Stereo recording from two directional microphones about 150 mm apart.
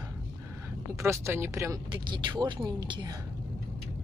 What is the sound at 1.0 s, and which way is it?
Speech, 15° right (ahead or behind).